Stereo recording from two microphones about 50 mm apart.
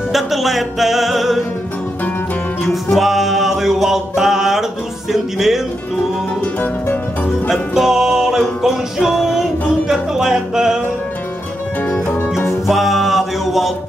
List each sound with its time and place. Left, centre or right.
0.1 s music: centre
2.7 s music: centre
5.1 s speech: centre
6.4 s music: left
7.4 s music: centre
12.6 s music: centre